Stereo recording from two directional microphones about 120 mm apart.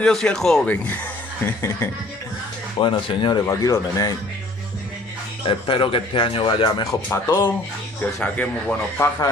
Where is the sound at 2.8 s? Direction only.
45° left (ahead or behind).